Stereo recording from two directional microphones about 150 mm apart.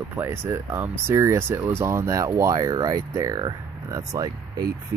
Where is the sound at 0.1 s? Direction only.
15° right (ahead or behind).